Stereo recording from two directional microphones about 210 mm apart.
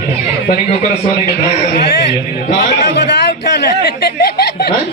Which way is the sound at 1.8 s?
55° left (ahead or behind).